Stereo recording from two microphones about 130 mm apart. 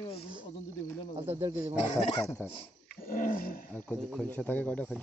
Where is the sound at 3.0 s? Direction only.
90° left.